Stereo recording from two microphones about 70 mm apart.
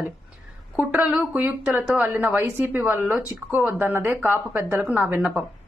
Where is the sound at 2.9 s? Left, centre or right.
Right.